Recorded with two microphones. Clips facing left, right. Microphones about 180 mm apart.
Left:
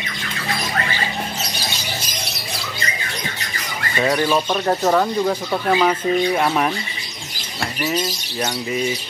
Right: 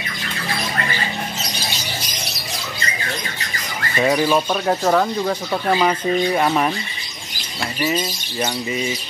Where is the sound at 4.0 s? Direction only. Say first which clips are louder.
Right 1 dB; 5° right (ahead or behind).